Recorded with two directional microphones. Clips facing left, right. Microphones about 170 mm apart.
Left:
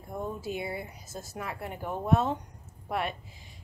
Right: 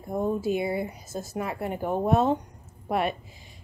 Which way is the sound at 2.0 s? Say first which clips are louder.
Right 3 dB; 20° right (ahead or behind).